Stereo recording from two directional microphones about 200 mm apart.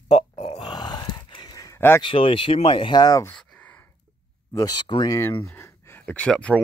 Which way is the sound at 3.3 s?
5° left (ahead or behind).